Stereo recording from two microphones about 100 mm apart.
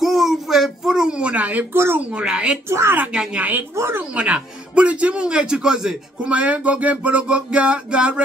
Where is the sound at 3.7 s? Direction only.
25° right (ahead or behind).